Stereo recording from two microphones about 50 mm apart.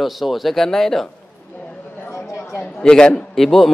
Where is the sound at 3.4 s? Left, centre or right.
Centre.